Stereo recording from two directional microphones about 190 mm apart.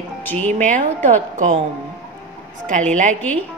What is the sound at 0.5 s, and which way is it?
A woman's voice, 45° right (ahead or behind).